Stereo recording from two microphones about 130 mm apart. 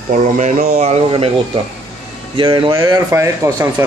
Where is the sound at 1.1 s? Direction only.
40° right (ahead or behind).